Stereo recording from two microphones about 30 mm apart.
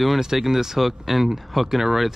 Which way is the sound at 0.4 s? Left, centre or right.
Centre.